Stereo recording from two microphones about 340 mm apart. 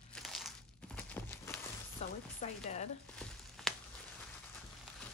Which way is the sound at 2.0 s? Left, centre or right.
Centre.